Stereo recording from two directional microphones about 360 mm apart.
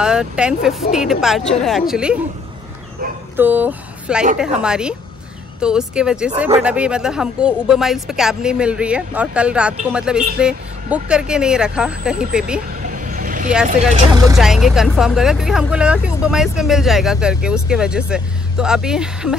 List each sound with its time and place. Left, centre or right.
0.0 s speech: centre
3.3 s speech: centre
12.8 s vehicle: right
13.5 s speech: centre